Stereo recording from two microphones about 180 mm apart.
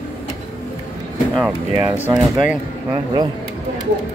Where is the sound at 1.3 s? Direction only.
5° right (ahead or behind).